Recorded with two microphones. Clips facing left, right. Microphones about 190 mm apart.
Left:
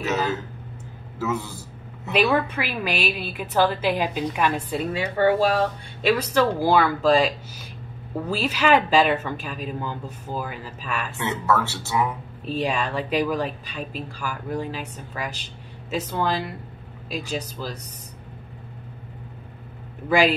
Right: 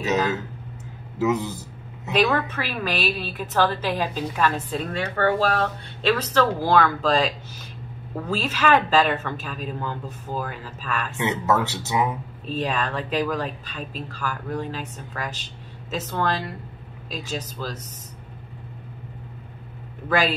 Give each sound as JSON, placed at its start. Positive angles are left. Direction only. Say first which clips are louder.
{"t": 0.0, "sound": "speech", "louder": "right 2 dB", "side_deg": -15}
{"t": 2.3, "sound": "a woman's voice", "louder": "left 2 dB", "side_deg": 10}
{"t": 11.1, "sound": "speech", "louder": "right 1 dB", "side_deg": -20}
{"t": 12.4, "sound": "a woman's voice", "louder": "left 1 dB", "side_deg": 10}
{"t": 20.1, "sound": "a woman's voice", "louder": "left 3 dB", "side_deg": 10}